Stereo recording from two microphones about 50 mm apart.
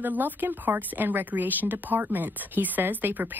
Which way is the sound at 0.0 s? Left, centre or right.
Right.